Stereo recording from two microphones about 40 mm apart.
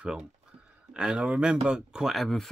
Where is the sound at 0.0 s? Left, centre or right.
Right.